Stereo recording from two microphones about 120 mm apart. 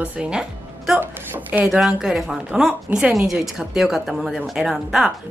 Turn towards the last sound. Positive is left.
turn(degrees=-5)  # may be behind; listen again after turning